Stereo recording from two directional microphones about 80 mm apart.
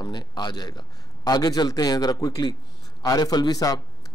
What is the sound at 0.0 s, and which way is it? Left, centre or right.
A man's voice, left.